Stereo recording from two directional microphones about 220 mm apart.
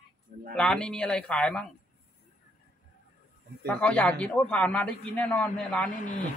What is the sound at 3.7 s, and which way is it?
A man's voice, 5° left (ahead or behind).